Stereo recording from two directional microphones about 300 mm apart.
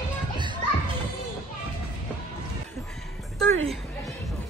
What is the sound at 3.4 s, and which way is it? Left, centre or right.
Speech, right.